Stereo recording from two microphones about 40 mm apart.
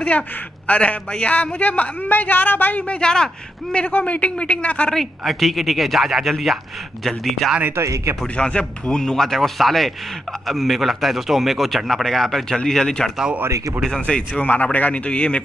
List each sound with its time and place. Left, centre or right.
0.7 s a man's voice: left
2.0 s a woman's voice: left
2.9 s speech: left
4.0 s a man's voice: left
4.9 s a man's voice: centre
7.6 s speech: right
8.4 s a man's voice: left; by 11.5 s centre
11.5 s a man's voice: centre
13.9 s speech: left
14.4 s a man's voice: left
15.0 s speech: left